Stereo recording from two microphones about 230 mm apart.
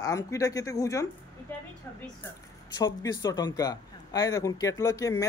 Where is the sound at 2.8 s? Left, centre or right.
Centre.